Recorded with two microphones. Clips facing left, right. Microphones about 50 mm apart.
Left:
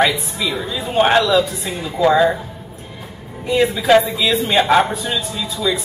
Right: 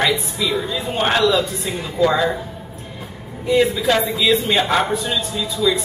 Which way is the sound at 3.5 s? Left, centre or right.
Centre.